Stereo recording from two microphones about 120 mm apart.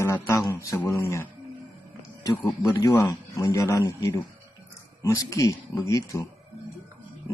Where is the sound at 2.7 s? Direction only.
30° left (ahead or behind).